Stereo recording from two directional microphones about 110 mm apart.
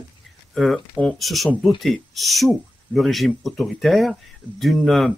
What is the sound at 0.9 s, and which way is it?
Speech, centre (ahead or behind).